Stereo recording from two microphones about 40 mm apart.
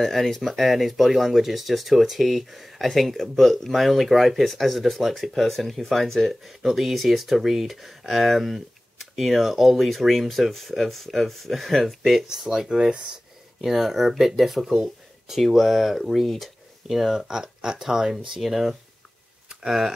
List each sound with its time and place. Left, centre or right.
0.0 s speech: centre
6.6 s speech: centre; by 13.2 s right
13.6 s speech: centre